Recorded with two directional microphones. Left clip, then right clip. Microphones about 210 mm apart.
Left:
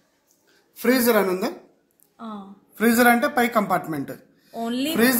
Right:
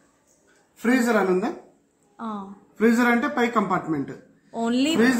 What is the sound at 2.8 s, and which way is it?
A man's voice, 50° left (ahead or behind).